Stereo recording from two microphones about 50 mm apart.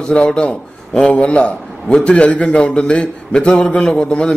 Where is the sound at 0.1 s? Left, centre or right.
Centre.